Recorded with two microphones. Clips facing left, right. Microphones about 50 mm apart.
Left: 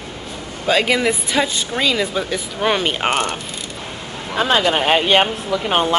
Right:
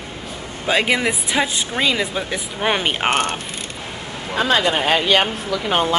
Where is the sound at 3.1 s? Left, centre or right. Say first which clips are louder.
Right 1 dB; right.